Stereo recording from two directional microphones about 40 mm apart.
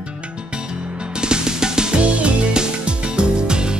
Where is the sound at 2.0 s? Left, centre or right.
Right.